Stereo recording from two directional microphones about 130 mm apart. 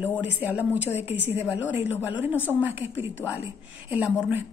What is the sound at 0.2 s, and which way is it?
Speech, 15° right (ahead or behind).